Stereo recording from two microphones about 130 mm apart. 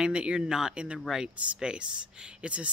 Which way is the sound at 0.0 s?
10° right (ahead or behind).